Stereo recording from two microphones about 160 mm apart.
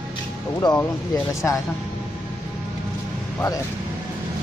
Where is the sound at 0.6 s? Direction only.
25° left (ahead or behind).